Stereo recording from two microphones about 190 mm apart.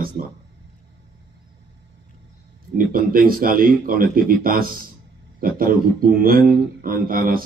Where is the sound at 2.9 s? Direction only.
50° right (ahead or behind).